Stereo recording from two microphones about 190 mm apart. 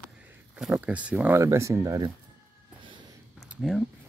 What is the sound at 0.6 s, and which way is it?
Speech, 5° right (ahead or behind).